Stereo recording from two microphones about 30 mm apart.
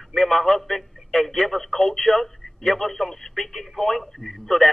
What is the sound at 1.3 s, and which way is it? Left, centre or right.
Speech, left.